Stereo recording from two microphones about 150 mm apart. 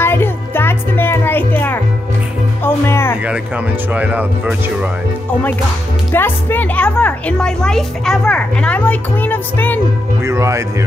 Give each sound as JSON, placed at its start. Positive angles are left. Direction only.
{"t": 0.0, "sound": "music", "side_deg": 15}
{"t": 3.9, "sound": "speech", "side_deg": -10}
{"t": 6.1, "sound": "speech", "side_deg": 15}
{"t": 10.2, "sound": "speech", "side_deg": -20}